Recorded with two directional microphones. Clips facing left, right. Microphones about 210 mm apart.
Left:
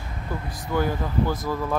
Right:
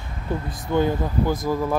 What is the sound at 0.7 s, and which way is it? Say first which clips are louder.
Speech: right 3 dB; 20° right (ahead or behind).